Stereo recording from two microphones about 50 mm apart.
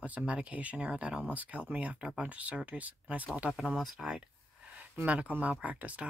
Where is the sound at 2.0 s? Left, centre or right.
Centre.